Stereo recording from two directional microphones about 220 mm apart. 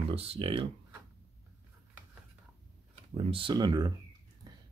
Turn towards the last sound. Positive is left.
turn(degrees=-20)  # may be behind; listen again after turning